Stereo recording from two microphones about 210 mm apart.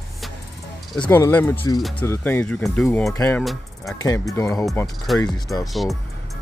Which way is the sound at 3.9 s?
15° left (ahead or behind).